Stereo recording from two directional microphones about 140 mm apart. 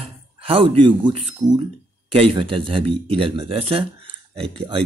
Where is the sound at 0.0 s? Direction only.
40° right (ahead or behind).